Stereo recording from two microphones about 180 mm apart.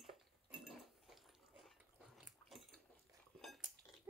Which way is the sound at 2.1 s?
Centre (ahead or behind).